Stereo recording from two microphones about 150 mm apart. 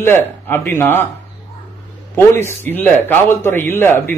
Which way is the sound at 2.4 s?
15° left (ahead or behind).